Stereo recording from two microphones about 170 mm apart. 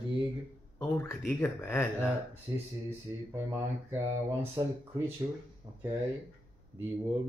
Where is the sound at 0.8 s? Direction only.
15° left (ahead or behind).